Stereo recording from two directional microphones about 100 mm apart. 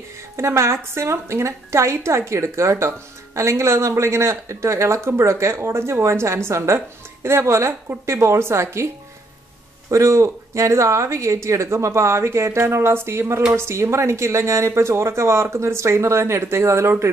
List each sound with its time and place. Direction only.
0.4 s speech: 30° right (ahead or behind)
9.8 s speech: 30° right (ahead or behind)